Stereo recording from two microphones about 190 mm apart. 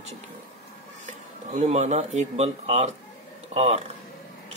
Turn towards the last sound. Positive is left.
turn(degrees=-35)  # may be behind; listen again after turning